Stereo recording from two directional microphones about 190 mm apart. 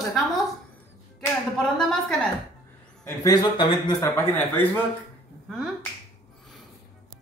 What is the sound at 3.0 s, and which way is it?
A man's voice, 20° left (ahead or behind).